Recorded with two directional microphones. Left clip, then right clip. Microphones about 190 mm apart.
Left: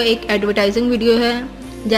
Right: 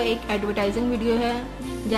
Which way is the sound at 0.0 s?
15° left (ahead or behind).